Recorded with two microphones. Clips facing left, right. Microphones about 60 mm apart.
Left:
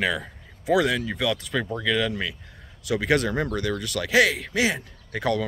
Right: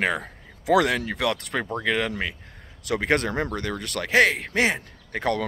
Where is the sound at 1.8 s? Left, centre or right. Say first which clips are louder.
Even; right.